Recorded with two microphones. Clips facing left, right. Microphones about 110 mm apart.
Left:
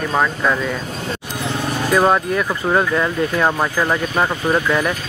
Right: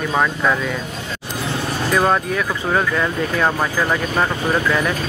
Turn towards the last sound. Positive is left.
turn(degrees=10)  # may be behind; listen again after turning